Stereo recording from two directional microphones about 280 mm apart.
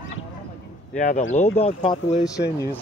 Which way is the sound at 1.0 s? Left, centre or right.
Left.